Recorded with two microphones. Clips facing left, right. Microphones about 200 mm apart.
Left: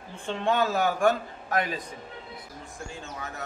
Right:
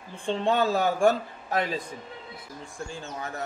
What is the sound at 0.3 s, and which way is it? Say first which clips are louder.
Speech: right 2 dB; 30° right (ahead or behind).